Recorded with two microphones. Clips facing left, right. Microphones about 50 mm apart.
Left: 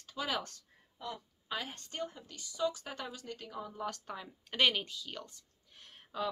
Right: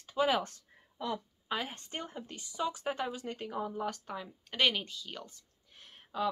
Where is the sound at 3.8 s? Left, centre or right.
Centre.